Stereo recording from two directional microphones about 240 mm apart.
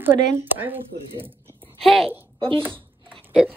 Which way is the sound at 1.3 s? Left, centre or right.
Centre.